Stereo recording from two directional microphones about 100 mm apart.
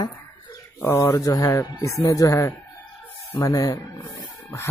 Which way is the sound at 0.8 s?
30° left (ahead or behind).